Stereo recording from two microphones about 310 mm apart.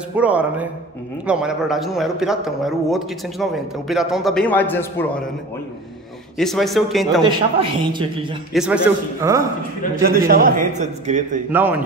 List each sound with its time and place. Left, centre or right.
0.1 s a man's voice: centre
6.3 s a man's voice: centre
7.2 s a man's voice: centre
8.5 s a man's voice: centre
10.0 s a man's voice: right
11.5 s a man's voice: centre